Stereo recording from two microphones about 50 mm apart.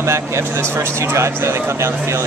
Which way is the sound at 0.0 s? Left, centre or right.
Right.